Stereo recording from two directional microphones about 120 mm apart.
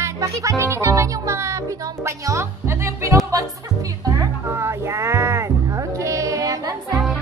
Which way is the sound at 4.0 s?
25° right (ahead or behind).